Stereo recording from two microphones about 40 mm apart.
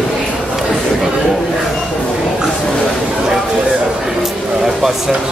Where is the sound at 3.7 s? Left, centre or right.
Centre.